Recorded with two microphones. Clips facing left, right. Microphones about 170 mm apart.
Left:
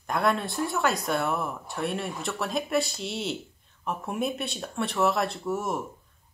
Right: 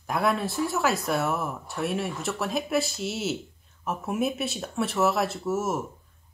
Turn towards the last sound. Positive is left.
turn(degrees=-5)  # may be behind; listen again after turning